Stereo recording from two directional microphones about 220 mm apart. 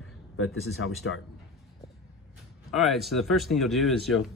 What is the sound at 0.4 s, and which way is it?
Speech, 75° left (ahead or behind).